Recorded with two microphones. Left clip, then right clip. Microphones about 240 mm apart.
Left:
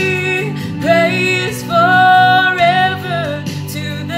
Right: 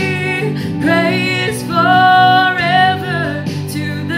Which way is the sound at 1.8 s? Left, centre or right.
Left.